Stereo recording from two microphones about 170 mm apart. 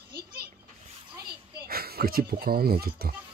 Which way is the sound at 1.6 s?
65° right (ahead or behind).